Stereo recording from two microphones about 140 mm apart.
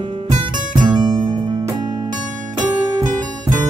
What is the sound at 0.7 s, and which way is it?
Music, 30° right (ahead or behind).